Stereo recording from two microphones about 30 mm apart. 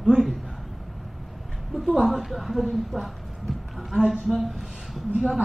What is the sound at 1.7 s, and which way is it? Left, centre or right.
Speech, centre.